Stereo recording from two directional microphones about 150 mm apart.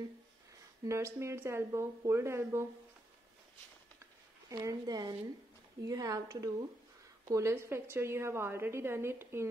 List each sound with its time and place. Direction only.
0.8 s a woman's voice: 20° right (ahead or behind)
4.5 s a woman's voice: 25° right (ahead or behind)